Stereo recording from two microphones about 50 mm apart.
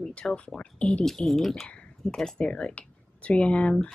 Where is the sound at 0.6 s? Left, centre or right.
Left.